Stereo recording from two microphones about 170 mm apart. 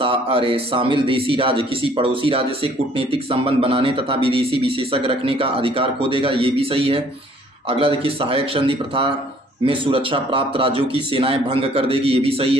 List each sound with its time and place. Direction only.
0.0 s a man's voice: 30° right (ahead or behind)